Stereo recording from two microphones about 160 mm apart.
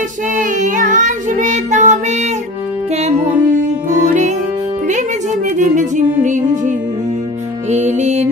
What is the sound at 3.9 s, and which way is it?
Music, 50° right (ahead or behind).